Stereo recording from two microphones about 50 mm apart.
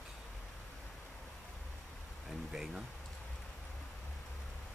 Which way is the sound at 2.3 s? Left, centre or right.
Centre.